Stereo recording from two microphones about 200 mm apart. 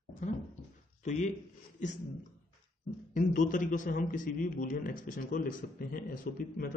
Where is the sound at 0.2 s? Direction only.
35° left (ahead or behind).